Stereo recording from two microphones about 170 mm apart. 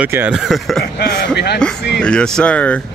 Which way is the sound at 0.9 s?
70° left (ahead or behind).